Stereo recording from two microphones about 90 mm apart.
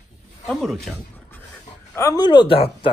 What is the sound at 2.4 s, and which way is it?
Speech, 80° left.